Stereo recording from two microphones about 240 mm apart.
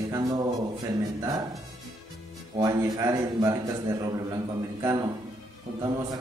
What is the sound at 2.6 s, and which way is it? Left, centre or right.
A man's voice, centre.